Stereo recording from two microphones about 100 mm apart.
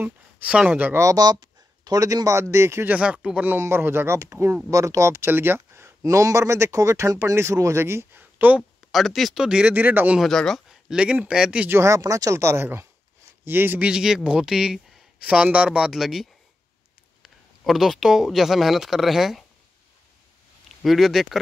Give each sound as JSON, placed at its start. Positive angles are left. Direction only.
{"t": 0.0, "sound": "speech", "side_deg": -15}
{"t": 0.9, "sound": "speech", "side_deg": -35}
{"t": 2.9, "sound": "speech", "side_deg": -10}
{"t": 3.5, "sound": "speech", "side_deg": -25}
{"t": 8.9, "sound": "speech", "side_deg": 0}
{"t": 10.2, "sound": "speech", "side_deg": 5}
{"t": 11.7, "sound": "speech", "side_deg": -30}
{"t": 20.6, "sound": "speech", "side_deg": 0}